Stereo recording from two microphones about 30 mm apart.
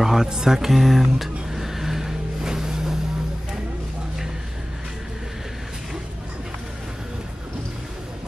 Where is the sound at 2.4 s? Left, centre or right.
Centre.